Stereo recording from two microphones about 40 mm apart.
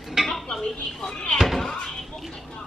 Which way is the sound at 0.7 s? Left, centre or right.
Centre.